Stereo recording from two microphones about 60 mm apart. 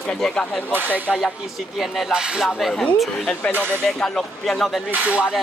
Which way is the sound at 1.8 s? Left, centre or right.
Centre.